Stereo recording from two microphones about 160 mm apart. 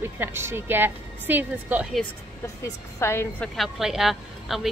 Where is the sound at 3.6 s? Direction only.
Centre (ahead or behind).